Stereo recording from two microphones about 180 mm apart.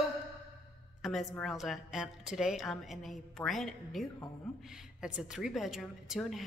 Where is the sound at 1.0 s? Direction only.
Centre (ahead or behind).